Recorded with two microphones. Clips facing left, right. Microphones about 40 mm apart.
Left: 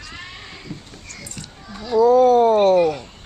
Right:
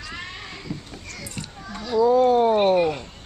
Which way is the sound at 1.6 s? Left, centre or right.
Right.